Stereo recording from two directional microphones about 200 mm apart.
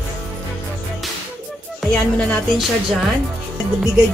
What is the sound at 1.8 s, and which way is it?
Music, centre (ahead or behind).